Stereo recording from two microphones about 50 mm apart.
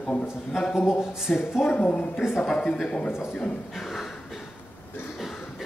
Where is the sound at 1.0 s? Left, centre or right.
Centre.